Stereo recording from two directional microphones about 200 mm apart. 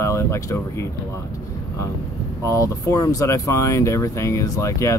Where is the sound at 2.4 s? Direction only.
15° left (ahead or behind).